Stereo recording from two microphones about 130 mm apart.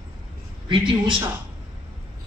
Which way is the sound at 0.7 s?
40° right (ahead or behind).